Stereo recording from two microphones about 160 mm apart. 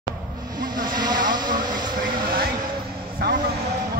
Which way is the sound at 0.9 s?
25° right (ahead or behind).